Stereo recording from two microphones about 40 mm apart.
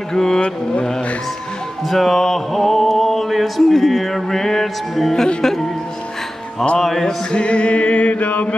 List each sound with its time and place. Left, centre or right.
0.1 s mantra: centre
1.9 s music: centre
6.8 s mantra: centre
7.2 s music: left